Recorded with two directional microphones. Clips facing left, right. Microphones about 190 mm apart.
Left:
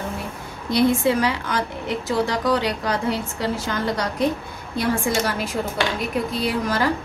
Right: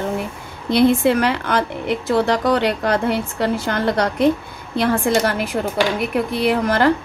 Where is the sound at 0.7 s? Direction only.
60° right (ahead or behind).